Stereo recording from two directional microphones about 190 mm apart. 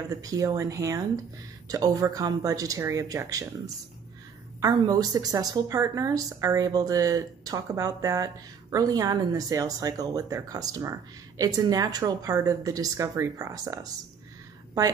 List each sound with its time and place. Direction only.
0.1 s a woman's voice: 20° right (ahead or behind)